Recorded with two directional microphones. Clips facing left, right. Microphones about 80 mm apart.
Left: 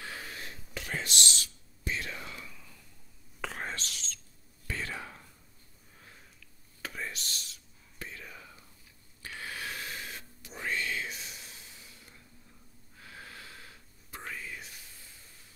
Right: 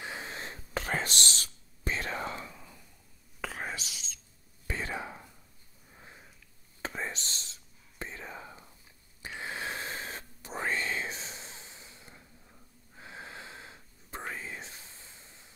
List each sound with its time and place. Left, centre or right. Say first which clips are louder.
0.0 s whispering: right 3 dB; right
3.3 s whispering: even; centre
5.9 s sniff: right 3 dB; right
6.8 s whispering: right 3 dB; right
9.2 s a sound: right 3 dB; right